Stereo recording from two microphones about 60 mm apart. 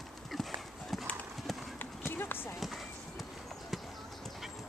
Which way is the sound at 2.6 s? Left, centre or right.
Centre.